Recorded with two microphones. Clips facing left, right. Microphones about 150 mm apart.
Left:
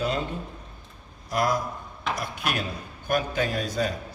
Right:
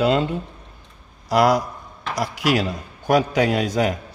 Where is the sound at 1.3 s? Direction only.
85° right.